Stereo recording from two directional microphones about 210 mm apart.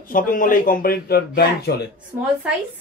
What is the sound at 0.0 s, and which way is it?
Speech, 40° left (ahead or behind).